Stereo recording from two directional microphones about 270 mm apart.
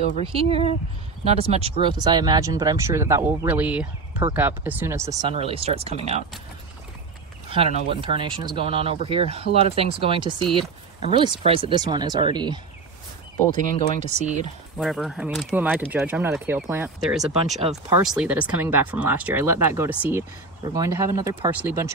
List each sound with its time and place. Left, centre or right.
0.2 s speech: right
5.3 s speech: right
7.4 s speech: right
13.9 s speech: right
14.8 s speech: centre